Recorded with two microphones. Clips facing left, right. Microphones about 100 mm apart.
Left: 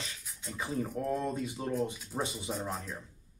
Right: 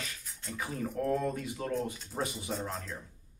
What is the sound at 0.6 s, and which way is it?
Speech, 20° left (ahead or behind).